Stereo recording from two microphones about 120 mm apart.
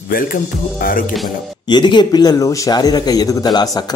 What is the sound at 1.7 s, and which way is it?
A man's voice, 40° left (ahead or behind).